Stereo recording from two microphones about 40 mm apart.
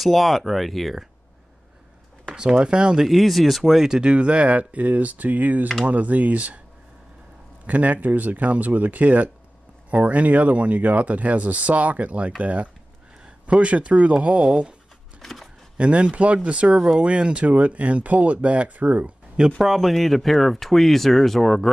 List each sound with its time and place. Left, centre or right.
0.0 s speech: centre
2.3 s speech: right
3.1 s speech: centre
3.9 s speech: right
7.6 s speech: right
15.2 s shuffling cards: centre
15.8 s speech: right
16.7 s speech: centre
17.0 s speech: right
19.6 s speech: centre